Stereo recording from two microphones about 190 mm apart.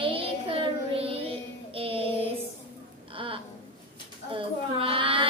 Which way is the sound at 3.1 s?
30° right (ahead or behind).